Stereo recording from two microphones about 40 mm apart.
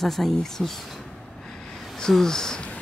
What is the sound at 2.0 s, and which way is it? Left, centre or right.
Speech, centre.